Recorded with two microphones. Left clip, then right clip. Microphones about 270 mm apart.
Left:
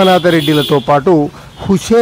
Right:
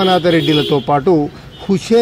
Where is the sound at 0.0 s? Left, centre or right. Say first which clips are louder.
Left 3 dB; centre.